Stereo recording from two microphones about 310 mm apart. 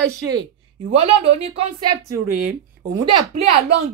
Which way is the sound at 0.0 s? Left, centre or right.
Centre.